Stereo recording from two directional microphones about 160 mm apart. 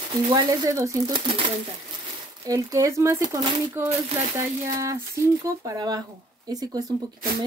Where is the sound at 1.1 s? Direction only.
30° right (ahead or behind).